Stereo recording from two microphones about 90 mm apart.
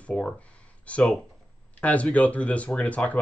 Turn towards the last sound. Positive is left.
turn(degrees=15)  # may be behind; listen again after turning